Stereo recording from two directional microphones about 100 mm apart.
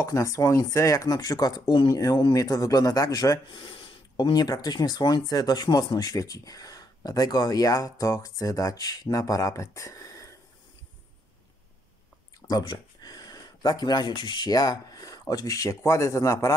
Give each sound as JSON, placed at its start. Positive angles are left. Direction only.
{"t": 0.0, "sound": "speech", "side_deg": 30}
{"t": 3.4, "sound": "speech", "side_deg": 55}
{"t": 12.4, "sound": "speech", "side_deg": 40}